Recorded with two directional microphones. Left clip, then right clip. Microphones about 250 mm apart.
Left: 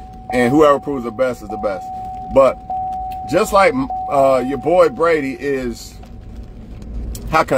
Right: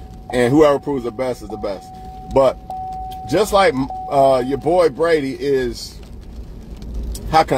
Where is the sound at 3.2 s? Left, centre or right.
Left.